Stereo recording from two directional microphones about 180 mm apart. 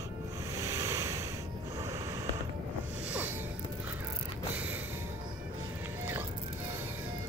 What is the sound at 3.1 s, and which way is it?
Music, 10° right (ahead or behind).